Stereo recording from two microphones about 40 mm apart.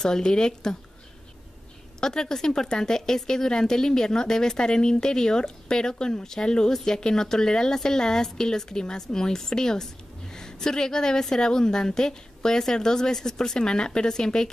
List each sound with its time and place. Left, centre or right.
0.0 s a woman's voice: centre
2.0 s a woman's voice: centre